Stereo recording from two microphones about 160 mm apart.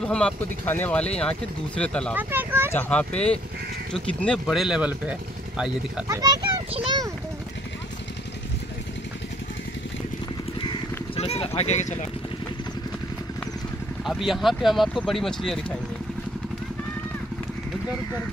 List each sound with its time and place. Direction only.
0.0 s speech: 5° left (ahead or behind)
2.1 s speech: 15° right (ahead or behind)
2.7 s speech: 10° left (ahead or behind)
4.5 s speech: 5° right (ahead or behind)
6.0 s speech: 25° right (ahead or behind)
10.6 s a sound: 35° left (ahead or behind)
14.0 s speech: centre (ahead or behind)